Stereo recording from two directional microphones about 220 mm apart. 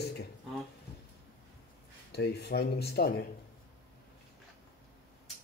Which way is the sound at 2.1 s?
45° left (ahead or behind).